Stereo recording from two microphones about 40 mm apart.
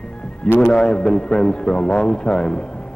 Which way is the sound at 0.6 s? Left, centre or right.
Left.